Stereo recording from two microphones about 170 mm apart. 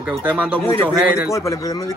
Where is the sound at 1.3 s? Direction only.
20° left (ahead or behind).